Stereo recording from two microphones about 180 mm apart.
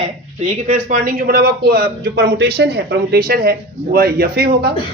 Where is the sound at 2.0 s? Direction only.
70° right (ahead or behind).